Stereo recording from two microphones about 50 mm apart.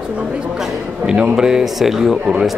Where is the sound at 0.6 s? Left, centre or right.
Centre.